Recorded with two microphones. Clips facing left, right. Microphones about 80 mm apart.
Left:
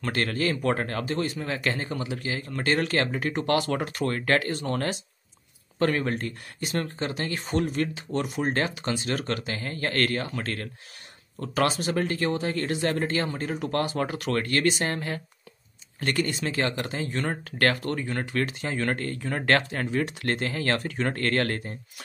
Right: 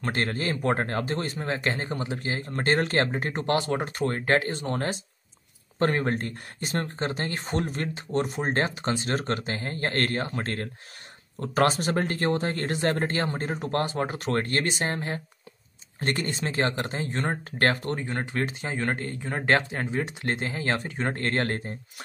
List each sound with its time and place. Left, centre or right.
0.0 s speech: right